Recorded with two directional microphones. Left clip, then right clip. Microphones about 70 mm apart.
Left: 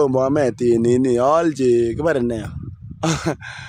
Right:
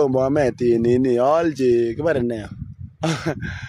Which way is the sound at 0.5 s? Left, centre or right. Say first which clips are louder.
Left 1 dB; left.